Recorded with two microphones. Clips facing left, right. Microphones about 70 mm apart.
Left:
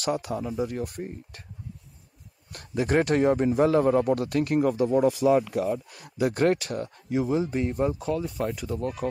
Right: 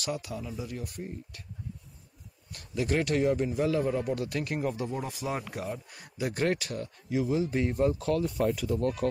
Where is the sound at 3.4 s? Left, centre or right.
Left.